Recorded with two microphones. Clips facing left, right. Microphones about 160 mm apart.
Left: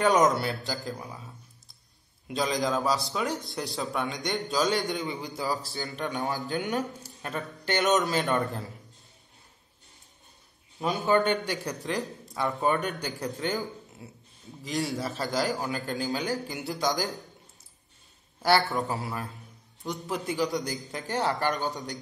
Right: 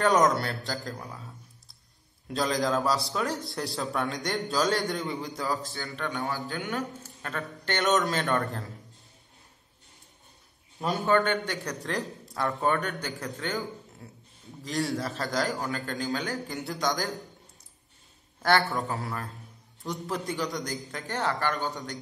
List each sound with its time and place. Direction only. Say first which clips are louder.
0.0 s a man's voice: even; centre (ahead or behind)
5.8 s a man's voice: left 1 dB; 15° left (ahead or behind)
10.8 s a man's voice: even; centre (ahead or behind)
11.1 s a man's voice: left 1 dB; 15° left (ahead or behind)
11.5 s a man's voice: left 1 dB; 5° left (ahead or behind)
12.7 s a man's voice: left 1 dB; 15° left (ahead or behind)
14.6 s a man's voice: right 1 dB; centre (ahead or behind)
16.3 s a man's voice: left 2 dB; 5° left (ahead or behind)
19.8 s a man's voice: even; 5° left (ahead or behind)
20.9 s a man's voice: left 2 dB; 15° left (ahead or behind)